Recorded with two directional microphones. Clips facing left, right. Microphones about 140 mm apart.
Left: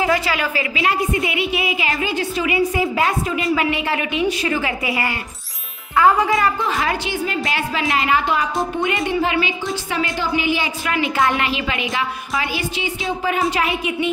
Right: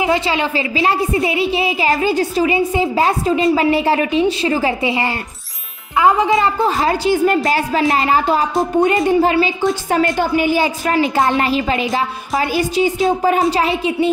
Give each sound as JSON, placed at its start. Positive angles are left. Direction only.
{"t": 0.0, "sound": "a woman's voice", "side_deg": -25}
{"t": 6.6, "sound": "a woman's voice", "side_deg": -35}
{"t": 9.8, "sound": "a woman's voice", "side_deg": -45}